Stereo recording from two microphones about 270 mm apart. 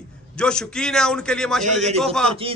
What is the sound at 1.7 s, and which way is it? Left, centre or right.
Speech, right.